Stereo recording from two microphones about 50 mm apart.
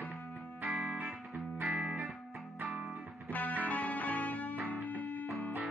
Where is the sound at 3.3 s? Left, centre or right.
Left.